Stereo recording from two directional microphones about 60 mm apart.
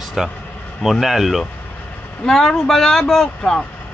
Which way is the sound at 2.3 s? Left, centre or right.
Centre.